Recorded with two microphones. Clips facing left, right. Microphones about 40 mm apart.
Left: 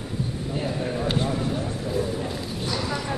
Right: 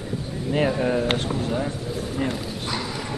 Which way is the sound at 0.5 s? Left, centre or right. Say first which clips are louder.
Right 7 dB; right.